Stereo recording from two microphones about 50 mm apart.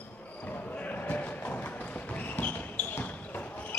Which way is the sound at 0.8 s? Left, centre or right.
Left.